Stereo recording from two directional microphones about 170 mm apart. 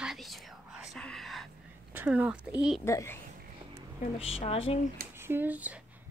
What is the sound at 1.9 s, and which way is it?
Speech, 10° right (ahead or behind).